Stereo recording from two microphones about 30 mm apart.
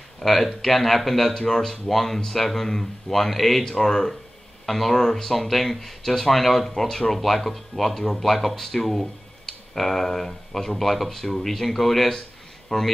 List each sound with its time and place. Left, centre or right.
0.2 s speech: centre
3.6 s speech: centre
4.6 s speech: centre